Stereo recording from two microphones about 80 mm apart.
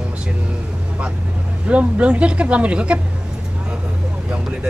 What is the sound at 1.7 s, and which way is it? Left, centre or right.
Speech, centre.